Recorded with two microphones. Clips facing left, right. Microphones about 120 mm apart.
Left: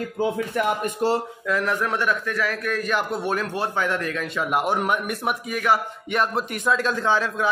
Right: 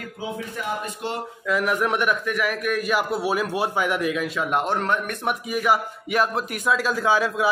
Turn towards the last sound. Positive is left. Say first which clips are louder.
# right 1 dB
turn(degrees=-10)  # may be behind; listen again after turning